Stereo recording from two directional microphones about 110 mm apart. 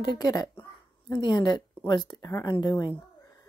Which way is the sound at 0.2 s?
35° left (ahead or behind).